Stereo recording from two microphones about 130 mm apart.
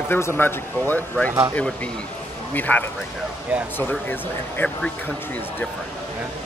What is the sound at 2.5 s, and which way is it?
Speech, 15° left (ahead or behind).